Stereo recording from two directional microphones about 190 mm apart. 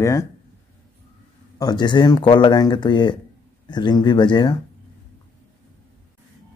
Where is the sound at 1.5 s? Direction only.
20° left (ahead or behind).